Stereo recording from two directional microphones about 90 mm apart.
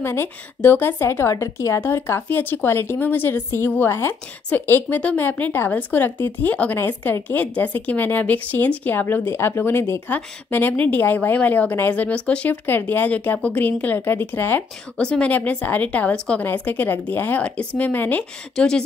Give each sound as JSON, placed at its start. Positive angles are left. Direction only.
{"t": 0.0, "sound": "speech", "side_deg": 25}
{"t": 15.0, "sound": "speech", "side_deg": 10}